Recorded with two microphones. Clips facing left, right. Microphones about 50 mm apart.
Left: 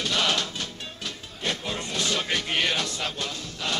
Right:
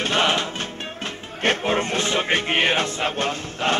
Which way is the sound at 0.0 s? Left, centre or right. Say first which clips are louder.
Right 5 dB; right.